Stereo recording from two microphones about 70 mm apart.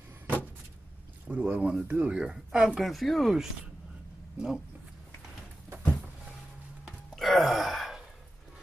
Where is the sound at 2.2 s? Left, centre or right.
Centre.